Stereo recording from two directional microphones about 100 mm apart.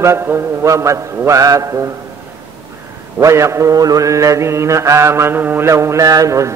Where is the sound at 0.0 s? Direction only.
30° right (ahead or behind).